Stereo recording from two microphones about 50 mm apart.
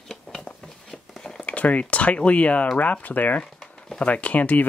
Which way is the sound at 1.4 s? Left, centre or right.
Left.